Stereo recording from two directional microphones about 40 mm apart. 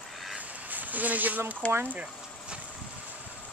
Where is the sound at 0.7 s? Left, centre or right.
Right.